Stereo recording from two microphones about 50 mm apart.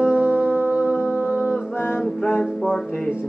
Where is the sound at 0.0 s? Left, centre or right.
Right.